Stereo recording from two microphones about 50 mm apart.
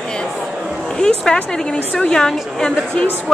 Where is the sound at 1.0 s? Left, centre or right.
Centre.